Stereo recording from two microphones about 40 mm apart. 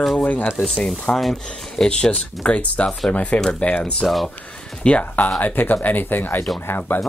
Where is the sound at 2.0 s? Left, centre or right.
Left.